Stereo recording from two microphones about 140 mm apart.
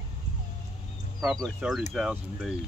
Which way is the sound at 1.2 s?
Centre (ahead or behind).